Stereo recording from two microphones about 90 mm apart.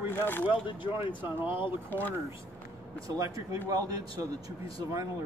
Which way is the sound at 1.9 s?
20° left (ahead or behind).